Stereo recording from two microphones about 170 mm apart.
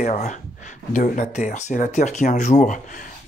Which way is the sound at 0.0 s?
40° left (ahead or behind).